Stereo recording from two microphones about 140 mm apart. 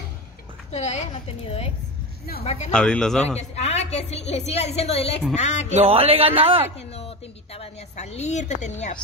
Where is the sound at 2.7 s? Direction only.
5° left (ahead or behind).